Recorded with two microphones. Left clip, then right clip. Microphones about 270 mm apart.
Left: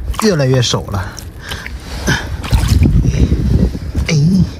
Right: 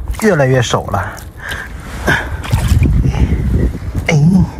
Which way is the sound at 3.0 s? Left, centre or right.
Centre.